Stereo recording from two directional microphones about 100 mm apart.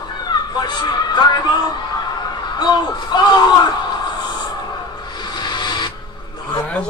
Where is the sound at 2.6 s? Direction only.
45° left (ahead or behind).